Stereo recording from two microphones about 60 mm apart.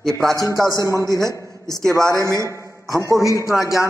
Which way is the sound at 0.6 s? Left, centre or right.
Right.